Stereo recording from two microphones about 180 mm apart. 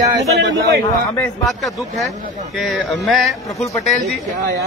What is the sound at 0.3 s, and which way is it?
Speech, 70° right (ahead or behind).